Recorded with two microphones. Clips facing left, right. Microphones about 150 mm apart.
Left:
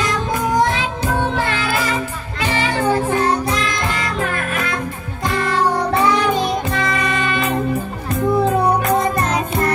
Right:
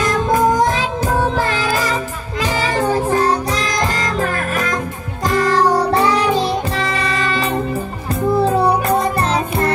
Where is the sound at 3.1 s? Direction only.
35° right (ahead or behind).